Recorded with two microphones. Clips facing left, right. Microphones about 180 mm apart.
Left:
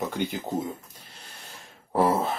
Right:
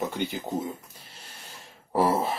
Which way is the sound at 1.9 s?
5° right (ahead or behind).